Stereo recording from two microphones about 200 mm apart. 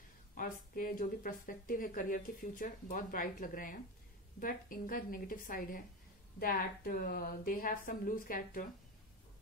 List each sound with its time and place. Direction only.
0.3 s a woman's voice: 45° left (ahead or behind)